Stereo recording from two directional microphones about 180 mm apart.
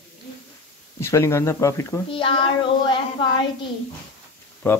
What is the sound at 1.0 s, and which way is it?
Speech, 15° left (ahead or behind).